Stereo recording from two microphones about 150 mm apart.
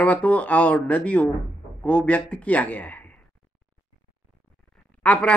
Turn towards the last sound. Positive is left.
turn(degrees=10)  # may be behind; listen again after turning